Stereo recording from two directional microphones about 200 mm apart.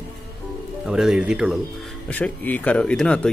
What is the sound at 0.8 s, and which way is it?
Speech, centre (ahead or behind).